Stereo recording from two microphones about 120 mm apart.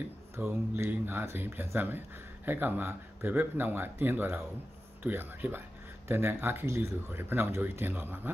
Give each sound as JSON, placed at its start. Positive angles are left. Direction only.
{"t": 0.4, "sound": "speech", "side_deg": -20}